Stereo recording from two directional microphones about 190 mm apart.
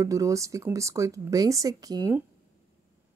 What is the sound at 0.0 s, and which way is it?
Speech, 15° right (ahead or behind).